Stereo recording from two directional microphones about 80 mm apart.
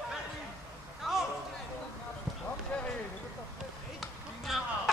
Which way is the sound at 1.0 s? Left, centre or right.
Centre.